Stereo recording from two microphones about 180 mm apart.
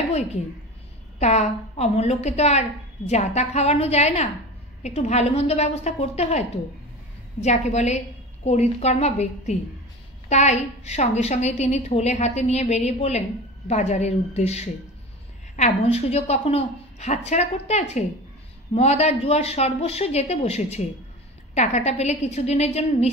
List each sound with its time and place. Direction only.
1.2 s a woman's voice: 40° left (ahead or behind)